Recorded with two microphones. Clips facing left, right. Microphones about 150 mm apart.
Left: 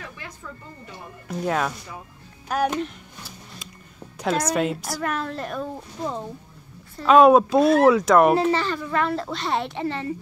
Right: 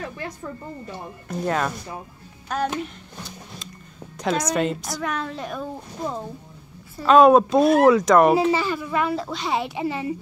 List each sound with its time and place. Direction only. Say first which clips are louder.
0.0 s a sound: right 7 dB; 40° right (ahead or behind)
1.4 s speech: even; centre (ahead or behind)
4.2 s speech: even; 5° left (ahead or behind); by 10.1 s 10° right (ahead or behind)